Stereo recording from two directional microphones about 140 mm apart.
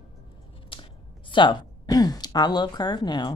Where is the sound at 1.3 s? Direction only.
35° left (ahead or behind).